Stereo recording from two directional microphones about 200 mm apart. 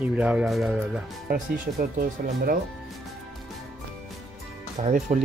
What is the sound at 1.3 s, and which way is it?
Speech, 45° right (ahead or behind).